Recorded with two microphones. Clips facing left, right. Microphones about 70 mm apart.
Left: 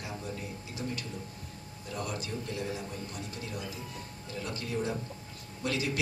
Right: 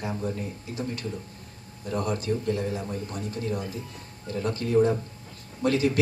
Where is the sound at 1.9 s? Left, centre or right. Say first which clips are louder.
Right 9 dB; right.